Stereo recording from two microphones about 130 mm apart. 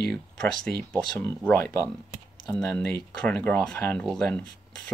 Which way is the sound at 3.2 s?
15° left (ahead or behind).